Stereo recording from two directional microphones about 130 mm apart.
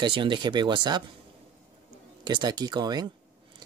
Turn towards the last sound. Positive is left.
turn(degrees=-30)  # may be behind; listen again after turning